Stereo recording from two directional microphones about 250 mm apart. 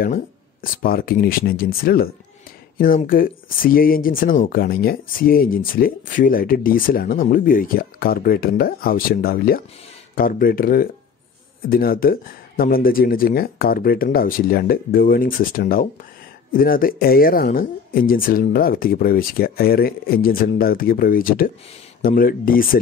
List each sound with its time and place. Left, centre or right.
0.0 s speech: left